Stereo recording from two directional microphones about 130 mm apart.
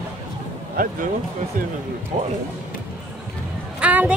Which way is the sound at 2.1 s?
45° right (ahead or behind).